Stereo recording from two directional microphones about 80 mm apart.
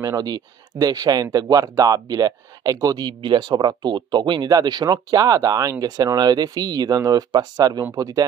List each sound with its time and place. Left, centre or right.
0.0 s speech: right
3.1 s speech: right